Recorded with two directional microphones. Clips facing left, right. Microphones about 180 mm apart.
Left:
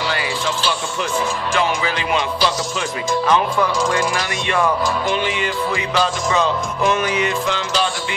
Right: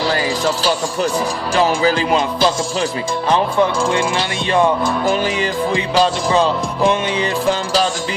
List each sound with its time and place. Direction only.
0.0 s music: 35° right (ahead or behind)
3.3 s speech: 30° right (ahead or behind)
5.0 s music: 40° right (ahead or behind)